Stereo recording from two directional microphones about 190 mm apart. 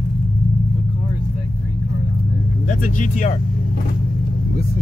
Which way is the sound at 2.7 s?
40° left (ahead or behind).